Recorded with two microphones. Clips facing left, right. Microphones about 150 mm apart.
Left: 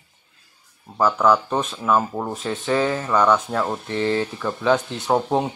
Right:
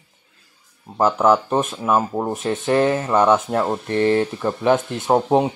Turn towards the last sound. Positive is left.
turn(degrees=-20)  # may be behind; listen again after turning